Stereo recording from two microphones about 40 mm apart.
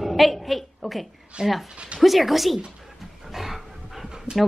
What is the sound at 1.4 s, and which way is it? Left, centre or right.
Speech, centre.